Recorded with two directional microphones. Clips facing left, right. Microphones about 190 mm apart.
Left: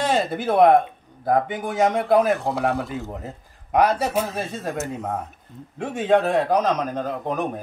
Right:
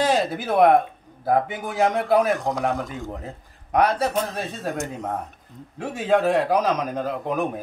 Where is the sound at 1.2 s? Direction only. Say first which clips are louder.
Left 1 dB; 5° right (ahead or behind).